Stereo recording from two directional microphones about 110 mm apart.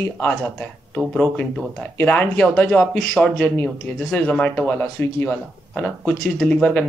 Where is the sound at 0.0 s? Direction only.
10° left (ahead or behind).